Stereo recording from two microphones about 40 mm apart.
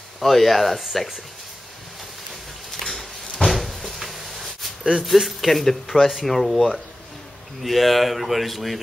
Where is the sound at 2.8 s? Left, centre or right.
Centre.